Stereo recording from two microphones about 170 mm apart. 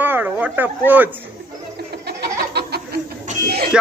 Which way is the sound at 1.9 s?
70° right (ahead or behind).